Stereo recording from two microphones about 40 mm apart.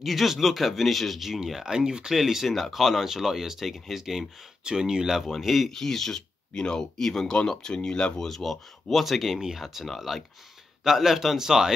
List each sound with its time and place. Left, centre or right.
0.0 s speech: centre
4.6 s a man's voice: centre
5.2 s speech: centre
5.7 s speech: centre
6.5 s speech: left
8.3 s a man's voice: centre